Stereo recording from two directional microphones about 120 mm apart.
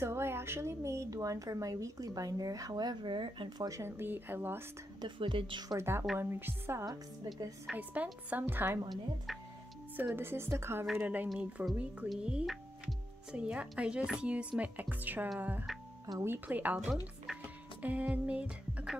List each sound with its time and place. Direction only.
0.0 s speech: 20° right (ahead or behind)
5.0 s speech: 45° right (ahead or behind)
5.8 s speech: 20° right (ahead or behind)
8.9 s speech: centre (ahead or behind)
9.9 s speech: 15° right (ahead or behind)
15.6 s music: centre (ahead or behind)
16.2 s speech: 15° right (ahead or behind)